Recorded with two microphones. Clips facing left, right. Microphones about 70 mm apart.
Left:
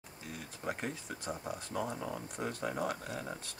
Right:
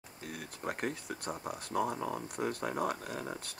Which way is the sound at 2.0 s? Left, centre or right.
Right.